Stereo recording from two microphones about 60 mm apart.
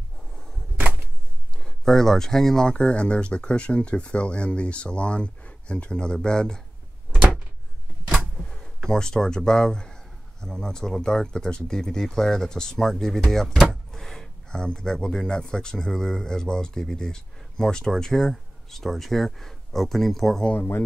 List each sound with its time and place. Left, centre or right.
0.7 s a sound: right
1.6 s speech: centre
8.4 s speech: centre
20.5 s speech: left